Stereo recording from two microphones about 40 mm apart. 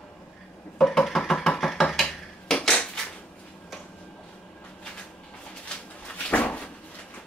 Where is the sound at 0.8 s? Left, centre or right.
Centre.